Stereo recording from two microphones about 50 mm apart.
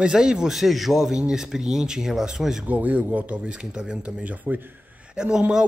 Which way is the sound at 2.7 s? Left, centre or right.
Right.